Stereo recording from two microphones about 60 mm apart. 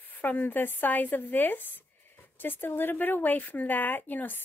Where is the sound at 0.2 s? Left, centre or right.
Left.